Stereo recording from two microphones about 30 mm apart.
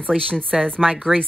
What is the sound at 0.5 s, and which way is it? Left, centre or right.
Speech, centre.